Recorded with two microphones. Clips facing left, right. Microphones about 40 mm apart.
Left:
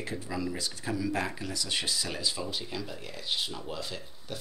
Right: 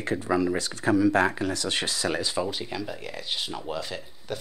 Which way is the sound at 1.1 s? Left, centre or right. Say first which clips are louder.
Right 10 dB; right.